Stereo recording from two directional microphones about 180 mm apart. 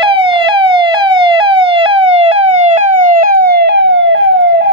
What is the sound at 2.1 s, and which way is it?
Police car, 35° right (ahead or behind).